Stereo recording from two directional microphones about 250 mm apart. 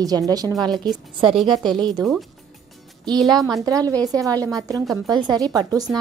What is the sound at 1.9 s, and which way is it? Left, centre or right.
Speech, centre.